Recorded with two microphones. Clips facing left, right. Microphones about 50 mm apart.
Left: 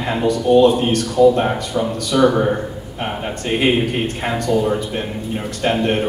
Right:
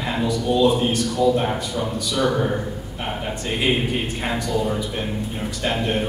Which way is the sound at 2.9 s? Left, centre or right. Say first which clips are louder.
Left 4 dB; left.